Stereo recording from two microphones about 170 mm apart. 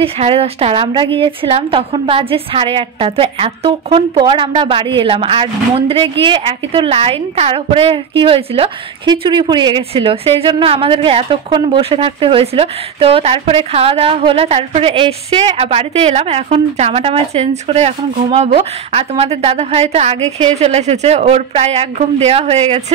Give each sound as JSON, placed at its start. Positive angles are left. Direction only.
{"t": 0.0, "sound": "a woman's voice", "side_deg": -35}